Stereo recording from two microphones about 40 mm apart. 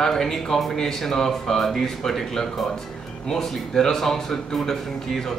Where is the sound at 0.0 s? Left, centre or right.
Centre.